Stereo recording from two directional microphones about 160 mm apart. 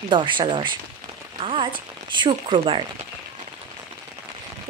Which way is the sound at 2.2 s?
30° right (ahead or behind).